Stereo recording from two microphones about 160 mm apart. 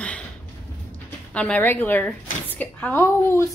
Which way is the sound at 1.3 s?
10° left (ahead or behind).